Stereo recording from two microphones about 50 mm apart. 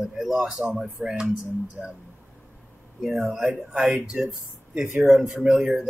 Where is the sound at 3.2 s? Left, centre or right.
Centre.